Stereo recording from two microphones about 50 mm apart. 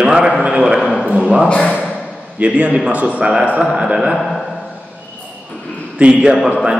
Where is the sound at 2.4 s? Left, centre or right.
Right.